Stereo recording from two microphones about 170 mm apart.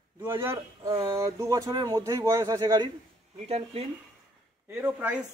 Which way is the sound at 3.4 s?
35° right (ahead or behind).